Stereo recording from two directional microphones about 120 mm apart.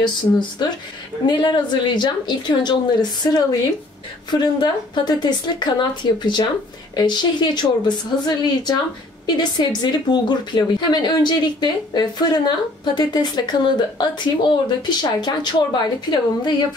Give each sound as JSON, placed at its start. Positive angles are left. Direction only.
{"t": 0.0, "sound": "a woman's voice", "side_deg": 40}
{"t": 9.2, "sound": "a woman's voice", "side_deg": 40}